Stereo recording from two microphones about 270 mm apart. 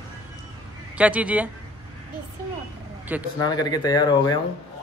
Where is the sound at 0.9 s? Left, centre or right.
Centre.